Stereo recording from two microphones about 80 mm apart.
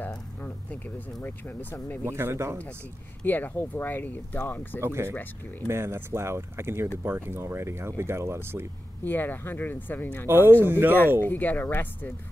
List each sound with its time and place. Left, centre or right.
0.4 s speech: left
2.1 s speech: right
3.3 s speech: left
4.7 s speech: right
9.0 s speech: left
10.2 s speech: right
11.2 s speech: left